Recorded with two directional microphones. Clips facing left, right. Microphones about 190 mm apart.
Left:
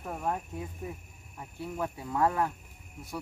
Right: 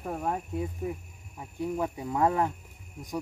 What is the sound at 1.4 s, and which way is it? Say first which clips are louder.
Speech: right 5 dB; 15° right (ahead or behind).